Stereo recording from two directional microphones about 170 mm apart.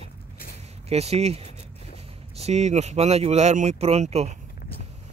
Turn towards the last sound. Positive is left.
turn(degrees=-40)  # may be behind; listen again after turning